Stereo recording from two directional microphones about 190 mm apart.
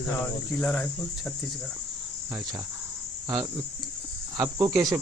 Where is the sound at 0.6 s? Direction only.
5° left (ahead or behind).